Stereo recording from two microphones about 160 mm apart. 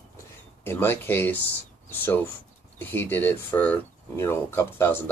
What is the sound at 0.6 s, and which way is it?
Speech, 15° left (ahead or behind).